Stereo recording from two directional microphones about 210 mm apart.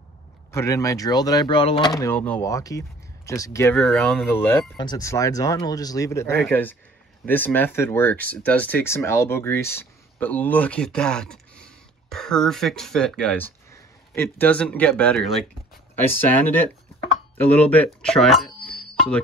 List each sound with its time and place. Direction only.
0.5 s speech: 15° left (ahead or behind)
2.0 s speech: 10° left (ahead or behind)